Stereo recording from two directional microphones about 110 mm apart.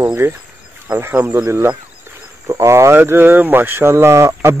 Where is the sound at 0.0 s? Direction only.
25° right (ahead or behind).